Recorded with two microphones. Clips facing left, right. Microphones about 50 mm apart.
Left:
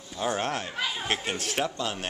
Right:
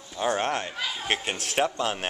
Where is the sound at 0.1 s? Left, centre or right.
Centre.